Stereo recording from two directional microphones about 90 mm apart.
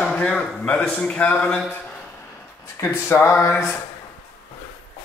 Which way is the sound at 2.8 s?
30° left (ahead or behind).